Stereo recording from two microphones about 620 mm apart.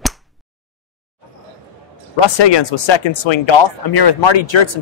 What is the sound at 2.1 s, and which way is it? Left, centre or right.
A man's voice, left.